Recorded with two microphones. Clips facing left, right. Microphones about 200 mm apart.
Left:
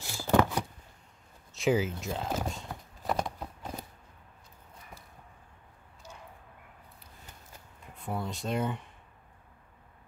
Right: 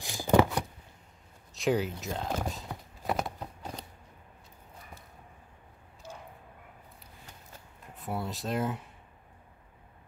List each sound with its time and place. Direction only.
0.0 s a sound: 15° right (ahead or behind)
1.5 s walk: centre (ahead or behind)
7.9 s speech: 5° right (ahead or behind)